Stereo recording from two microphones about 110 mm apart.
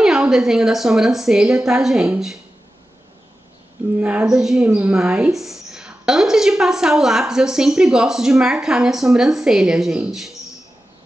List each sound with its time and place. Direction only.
0.0 s a woman's voice: 5° right (ahead or behind)
4.0 s a woman's voice: 10° right (ahead or behind)